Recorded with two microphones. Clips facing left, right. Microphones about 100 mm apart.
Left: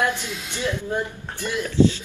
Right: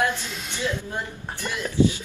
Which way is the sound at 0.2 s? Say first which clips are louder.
Left 2 dB; 15° left (ahead or behind).